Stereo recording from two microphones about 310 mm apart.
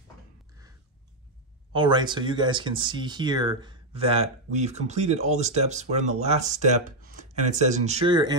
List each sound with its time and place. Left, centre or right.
1.7 s speech: centre